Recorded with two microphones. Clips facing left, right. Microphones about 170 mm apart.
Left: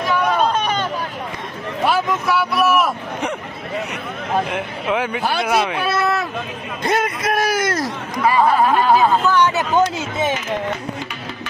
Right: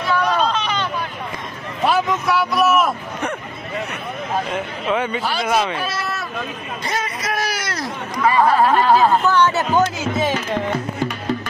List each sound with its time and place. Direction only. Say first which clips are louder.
0.0 s hubbub: left 1 dB; 10° left (ahead or behind)
0.5 s hubbub: left 2 dB; 50° left (ahead or behind)
1.9 s speech: right 1 dB; 5° left (ahead or behind)
4.5 s speech: even; 10° left (ahead or behind)
5.1 s speech: left 2 dB; 60° left (ahead or behind)
5.5 s speech: right 1 dB; 5° left (ahead or behind)
5.8 s a sound: left 6 dB; 65° left (ahead or behind)
6.8 s a sound: left 7 dB; 55° left (ahead or behind)
8.5 s speech: right 1 dB; centre (ahead or behind)
9.3 s speech: even; 15° left (ahead or behind)